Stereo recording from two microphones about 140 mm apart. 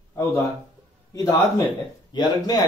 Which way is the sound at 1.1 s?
20° left (ahead or behind).